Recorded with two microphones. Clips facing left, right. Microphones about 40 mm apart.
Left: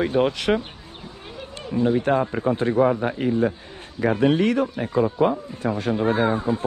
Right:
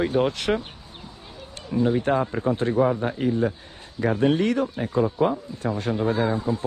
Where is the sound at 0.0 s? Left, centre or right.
Left.